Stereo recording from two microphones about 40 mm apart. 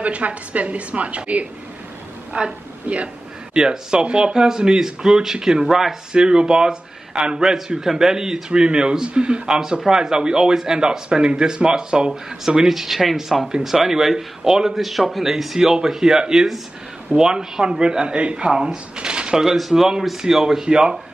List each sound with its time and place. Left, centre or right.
0.0 s a woman's voice: right
3.5 s speech: centre
6.1 s speech: right
9.5 s speech: centre
14.7 s speech: centre; by 18.7 s right
18.9 s a sound: right
19.4 s speech: centre
20.6 s speech: right